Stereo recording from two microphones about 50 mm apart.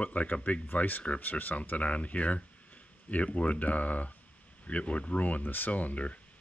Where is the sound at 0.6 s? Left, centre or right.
Left.